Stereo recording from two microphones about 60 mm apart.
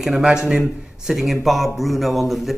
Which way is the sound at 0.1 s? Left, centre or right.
Centre.